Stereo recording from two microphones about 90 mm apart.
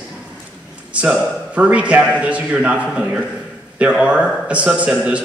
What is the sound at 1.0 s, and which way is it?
A man's voice, 15° right (ahead or behind).